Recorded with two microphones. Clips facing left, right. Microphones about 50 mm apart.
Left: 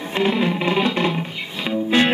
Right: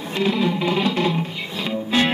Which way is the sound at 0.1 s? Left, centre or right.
Left.